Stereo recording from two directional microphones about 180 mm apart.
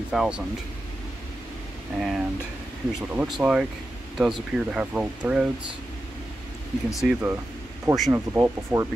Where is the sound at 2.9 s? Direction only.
Centre (ahead or behind).